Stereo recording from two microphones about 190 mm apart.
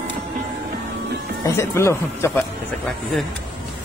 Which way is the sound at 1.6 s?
15° left (ahead or behind).